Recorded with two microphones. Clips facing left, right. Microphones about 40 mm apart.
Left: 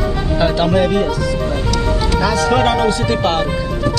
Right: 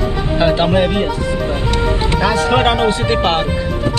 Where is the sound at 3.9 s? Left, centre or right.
Right.